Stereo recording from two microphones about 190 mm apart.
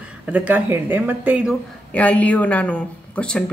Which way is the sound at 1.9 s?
5° left (ahead or behind).